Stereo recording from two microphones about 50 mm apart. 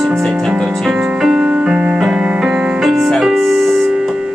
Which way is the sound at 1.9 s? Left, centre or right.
Centre.